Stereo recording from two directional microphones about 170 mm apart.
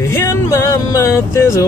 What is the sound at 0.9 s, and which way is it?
Music, 15° left (ahead or behind).